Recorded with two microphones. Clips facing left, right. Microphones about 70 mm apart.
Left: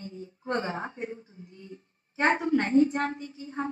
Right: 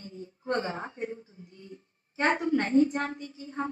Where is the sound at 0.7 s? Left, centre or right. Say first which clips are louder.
Left 1 dB; left.